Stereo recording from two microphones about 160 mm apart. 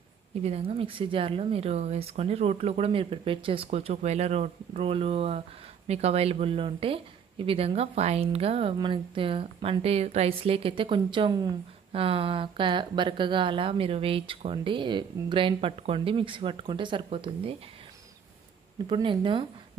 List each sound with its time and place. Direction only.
0.4 s a woman's voice: 40° right (ahead or behind)
18.9 s speech: 30° right (ahead or behind)